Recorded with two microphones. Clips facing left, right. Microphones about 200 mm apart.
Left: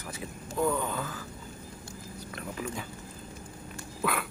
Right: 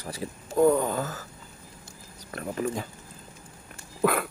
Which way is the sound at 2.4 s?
45° right (ahead or behind).